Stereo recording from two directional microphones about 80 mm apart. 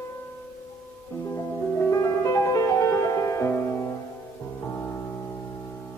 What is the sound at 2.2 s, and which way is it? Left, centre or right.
Music, left.